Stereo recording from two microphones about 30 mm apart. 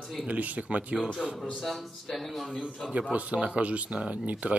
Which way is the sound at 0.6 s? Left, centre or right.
Right.